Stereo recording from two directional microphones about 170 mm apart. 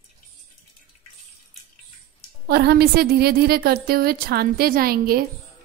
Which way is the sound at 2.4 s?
70° right (ahead or behind).